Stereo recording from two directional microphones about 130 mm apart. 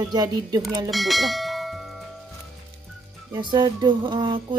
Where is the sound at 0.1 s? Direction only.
30° right (ahead or behind).